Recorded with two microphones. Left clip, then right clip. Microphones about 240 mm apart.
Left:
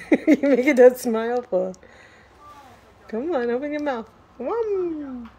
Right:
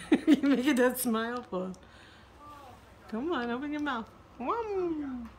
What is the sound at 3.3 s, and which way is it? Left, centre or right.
Speech, right.